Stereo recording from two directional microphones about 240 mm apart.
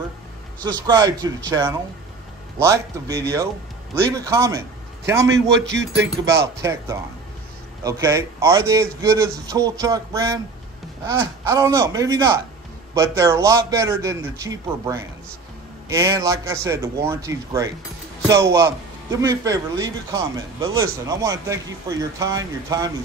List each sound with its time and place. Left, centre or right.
0.7 s a man's voice: centre
5.7 s speech: right
6.2 s speech: centre